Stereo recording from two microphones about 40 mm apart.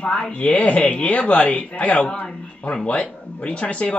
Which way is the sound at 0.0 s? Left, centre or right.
Left.